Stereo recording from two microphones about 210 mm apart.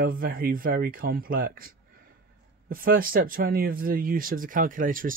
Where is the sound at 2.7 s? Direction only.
45° right (ahead or behind).